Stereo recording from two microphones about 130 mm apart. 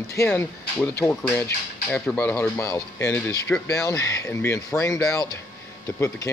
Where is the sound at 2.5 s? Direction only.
25° left (ahead or behind).